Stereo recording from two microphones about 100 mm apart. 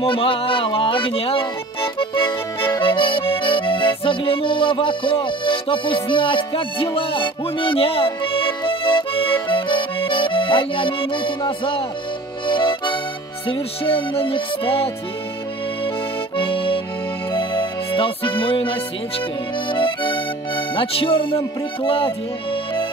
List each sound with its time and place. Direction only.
0.0 s music: 65° left (ahead or behind)
13.5 s music: 65° left (ahead or behind)
16.3 s accordion: 60° left (ahead or behind)
17.3 s music: 55° left (ahead or behind)